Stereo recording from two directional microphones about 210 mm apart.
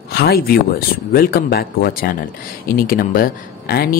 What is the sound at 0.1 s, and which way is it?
Speech, 50° left (ahead or behind).